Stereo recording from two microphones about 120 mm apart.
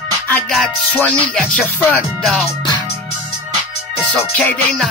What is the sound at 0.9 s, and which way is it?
Music, 10° left (ahead or behind).